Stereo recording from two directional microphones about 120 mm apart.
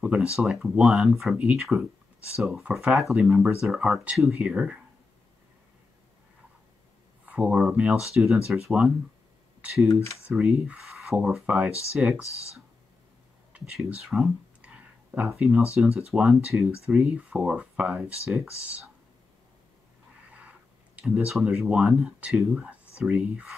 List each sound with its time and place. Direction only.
0.0 s speech: 10° right (ahead or behind)
7.2 s speech: 10° right (ahead or behind)
10.2 s speech: 10° right (ahead or behind)
12.2 s speech: 25° left (ahead or behind)
13.8 s a sound: 5° right (ahead or behind)
15.2 s speech: 5° right (ahead or behind)
20.3 s speech: 10° right (ahead or behind)